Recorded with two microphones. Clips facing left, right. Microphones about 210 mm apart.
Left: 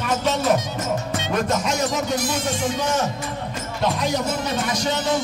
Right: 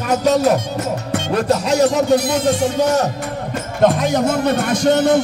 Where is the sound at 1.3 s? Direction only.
35° right (ahead or behind).